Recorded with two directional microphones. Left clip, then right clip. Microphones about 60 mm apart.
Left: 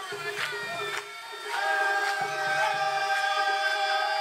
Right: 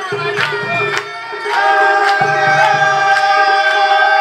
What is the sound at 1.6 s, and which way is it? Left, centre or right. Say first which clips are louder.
Music: right 15 dB; left.